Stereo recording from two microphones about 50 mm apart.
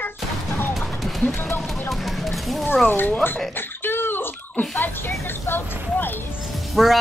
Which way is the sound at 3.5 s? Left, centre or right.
Left.